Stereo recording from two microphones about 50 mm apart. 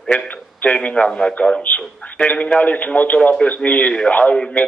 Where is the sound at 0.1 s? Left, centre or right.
Left.